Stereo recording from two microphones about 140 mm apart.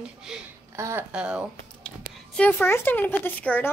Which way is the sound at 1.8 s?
5° left (ahead or behind).